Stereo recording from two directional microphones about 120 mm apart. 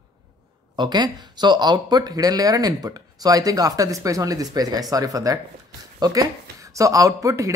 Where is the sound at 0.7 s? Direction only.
35° right (ahead or behind).